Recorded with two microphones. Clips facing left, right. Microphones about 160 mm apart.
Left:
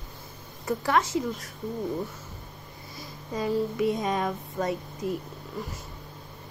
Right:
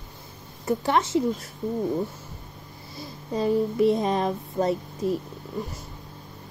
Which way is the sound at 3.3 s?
35° right (ahead or behind).